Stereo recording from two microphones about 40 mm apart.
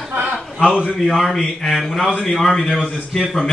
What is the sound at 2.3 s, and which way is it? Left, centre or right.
Speech, centre.